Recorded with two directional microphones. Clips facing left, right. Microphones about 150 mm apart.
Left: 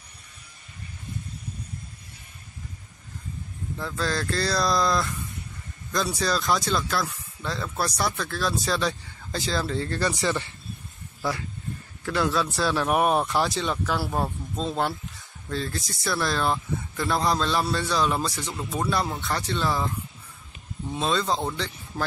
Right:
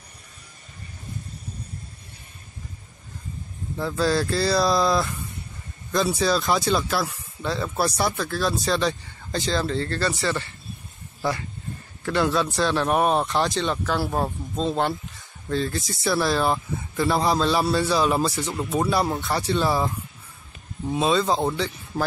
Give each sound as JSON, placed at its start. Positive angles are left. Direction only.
{"t": 3.8, "sound": "speech", "side_deg": -10}
{"t": 12.0, "sound": "speech", "side_deg": 0}
{"t": 18.4, "sound": "speech", "side_deg": -30}
{"t": 18.7, "sound": "speech", "side_deg": -10}
{"t": 20.9, "sound": "speech", "side_deg": -5}
{"t": 21.9, "sound": "speech", "side_deg": -30}